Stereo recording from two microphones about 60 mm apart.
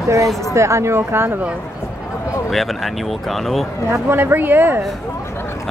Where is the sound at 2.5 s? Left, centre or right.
Centre.